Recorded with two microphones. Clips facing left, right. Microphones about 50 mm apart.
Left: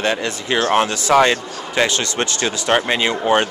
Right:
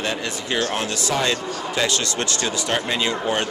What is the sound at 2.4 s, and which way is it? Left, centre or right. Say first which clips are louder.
Speech: left 8 dB; left.